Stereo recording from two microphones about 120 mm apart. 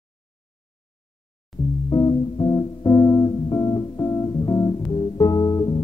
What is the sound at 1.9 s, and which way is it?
Music, 30° left (ahead or behind).